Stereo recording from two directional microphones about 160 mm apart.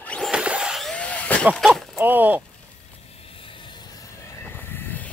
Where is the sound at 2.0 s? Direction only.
10° right (ahead or behind).